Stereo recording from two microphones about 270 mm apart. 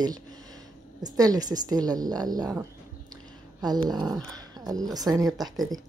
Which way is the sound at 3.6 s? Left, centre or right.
Centre.